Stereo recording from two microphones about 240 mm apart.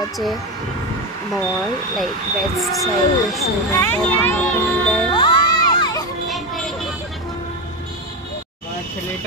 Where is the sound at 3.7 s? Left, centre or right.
Centre.